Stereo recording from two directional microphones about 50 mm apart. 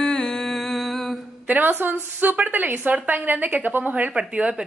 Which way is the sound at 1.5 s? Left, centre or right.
Right.